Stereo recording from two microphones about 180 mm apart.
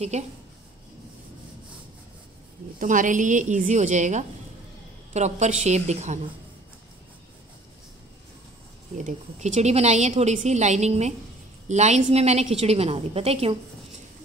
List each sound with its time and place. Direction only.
0.1 s a woman's voice: 40° right (ahead or behind)
2.8 s a woman's voice: 45° right (ahead or behind)
8.9 s a woman's voice: 40° right (ahead or behind)